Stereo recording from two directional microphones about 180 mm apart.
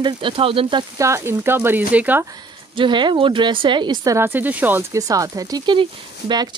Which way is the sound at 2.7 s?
25° right (ahead or behind).